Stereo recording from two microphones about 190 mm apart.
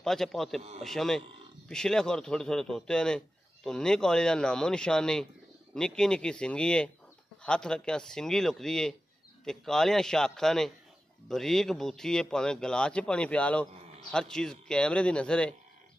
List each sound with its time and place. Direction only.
0.0 s speech: centre (ahead or behind)
0.6 s speech: 35° right (ahead or behind)
0.8 s speech: centre (ahead or behind)